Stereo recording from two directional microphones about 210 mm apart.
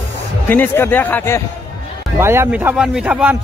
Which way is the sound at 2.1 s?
10° right (ahead or behind).